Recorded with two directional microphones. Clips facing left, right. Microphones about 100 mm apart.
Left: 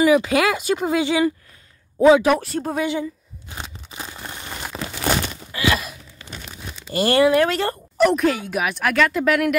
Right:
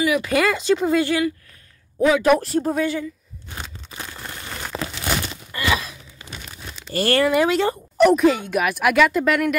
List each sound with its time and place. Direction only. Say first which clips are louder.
0.3 s speech: right 1 dB; 10° left (ahead or behind); by 2.2 s 25° left (ahead or behind)
2.2 s speech: right 2 dB; centre (ahead or behind)
2.8 s crumpling: even; 15° left (ahead or behind)
5.7 s a sound: left 1 dB; centre (ahead or behind)
6.7 s crumpling: left 1 dB; 15° left (ahead or behind)
7.2 s speech: left 1 dB; centre (ahead or behind)